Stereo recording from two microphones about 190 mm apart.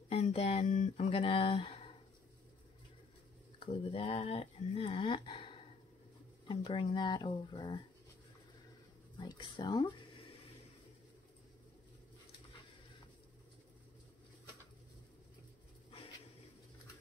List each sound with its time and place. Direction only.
0.1 s speech: 30° left (ahead or behind)
3.5 s speech: 30° left (ahead or behind)
9.2 s speech: 25° left (ahead or behind)